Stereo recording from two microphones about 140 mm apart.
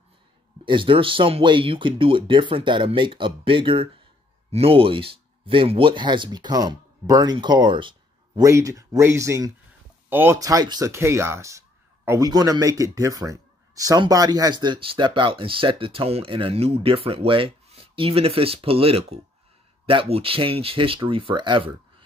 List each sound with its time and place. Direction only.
0.7 s speech: 40° right (ahead or behind)
8.4 s speech: 25° right (ahead or behind)